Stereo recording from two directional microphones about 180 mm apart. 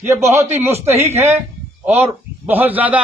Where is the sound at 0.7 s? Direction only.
35° right (ahead or behind).